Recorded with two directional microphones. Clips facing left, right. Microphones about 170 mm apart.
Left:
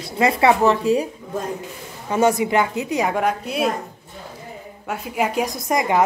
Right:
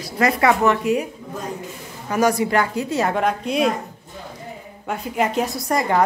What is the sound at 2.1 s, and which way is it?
A woman's voice, 25° left (ahead or behind).